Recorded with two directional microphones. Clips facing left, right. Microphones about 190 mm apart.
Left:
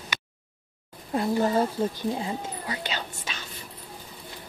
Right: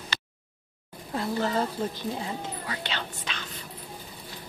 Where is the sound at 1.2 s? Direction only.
15° left (ahead or behind).